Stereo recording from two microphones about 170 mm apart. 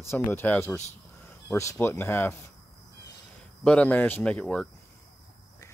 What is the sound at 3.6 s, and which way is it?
Speech, 5° left (ahead or behind).